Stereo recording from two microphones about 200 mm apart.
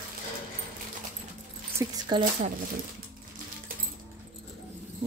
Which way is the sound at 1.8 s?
20° right (ahead or behind).